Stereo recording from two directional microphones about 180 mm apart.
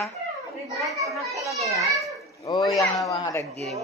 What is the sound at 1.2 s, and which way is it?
Speech, centre (ahead or behind).